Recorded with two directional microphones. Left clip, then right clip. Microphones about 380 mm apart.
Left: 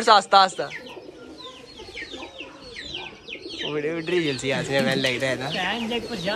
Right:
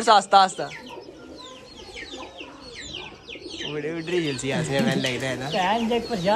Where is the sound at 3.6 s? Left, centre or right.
Centre.